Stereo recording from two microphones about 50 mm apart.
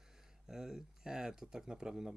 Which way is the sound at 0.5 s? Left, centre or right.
Centre.